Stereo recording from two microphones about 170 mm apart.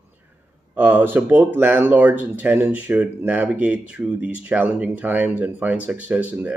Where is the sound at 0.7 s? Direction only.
10° right (ahead or behind).